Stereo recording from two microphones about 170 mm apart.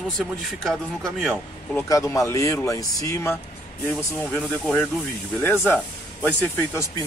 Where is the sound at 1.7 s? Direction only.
15° left (ahead or behind).